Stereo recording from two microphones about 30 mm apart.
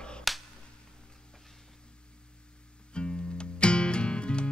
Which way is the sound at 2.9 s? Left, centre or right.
Left.